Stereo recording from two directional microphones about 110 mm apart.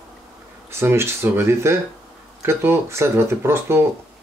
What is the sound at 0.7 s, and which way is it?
Speech, 25° right (ahead or behind).